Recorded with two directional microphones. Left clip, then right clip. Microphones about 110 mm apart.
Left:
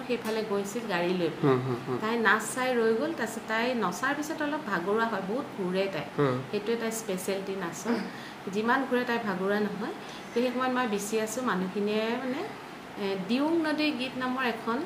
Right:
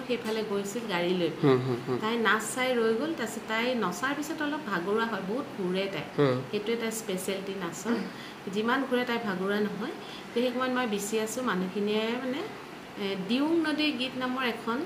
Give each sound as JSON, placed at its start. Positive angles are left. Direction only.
{"t": 0.1, "sound": "a woman's voice", "side_deg": 0}
{"t": 1.4, "sound": "a woman's voice", "side_deg": -20}
{"t": 2.0, "sound": "a woman's voice", "side_deg": 0}
{"t": 6.2, "sound": "a woman's voice", "side_deg": -15}
{"t": 6.5, "sound": "a woman's voice", "side_deg": 0}
{"t": 8.5, "sound": "a woman's voice", "side_deg": 0}